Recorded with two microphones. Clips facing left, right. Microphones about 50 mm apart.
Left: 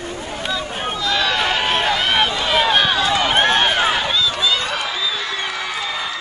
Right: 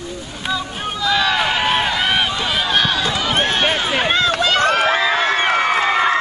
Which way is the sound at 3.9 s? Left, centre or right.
Right.